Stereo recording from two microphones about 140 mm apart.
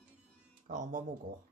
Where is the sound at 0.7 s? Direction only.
65° right (ahead or behind).